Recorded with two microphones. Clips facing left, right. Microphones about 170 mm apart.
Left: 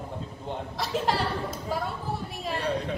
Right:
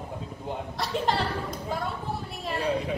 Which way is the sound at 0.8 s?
Centre (ahead or behind).